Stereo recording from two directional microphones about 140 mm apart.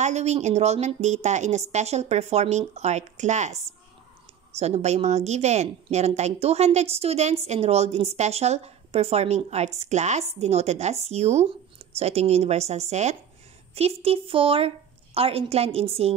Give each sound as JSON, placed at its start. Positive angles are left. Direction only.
{"t": 0.0, "sound": "a woman's voice", "side_deg": -55}
{"t": 4.6, "sound": "a woman's voice", "side_deg": -50}